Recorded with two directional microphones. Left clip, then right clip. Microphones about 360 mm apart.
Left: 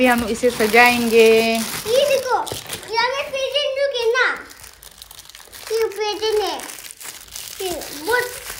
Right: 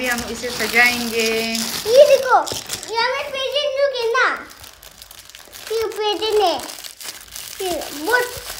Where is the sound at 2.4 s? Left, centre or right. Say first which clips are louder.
Right 2 dB; centre.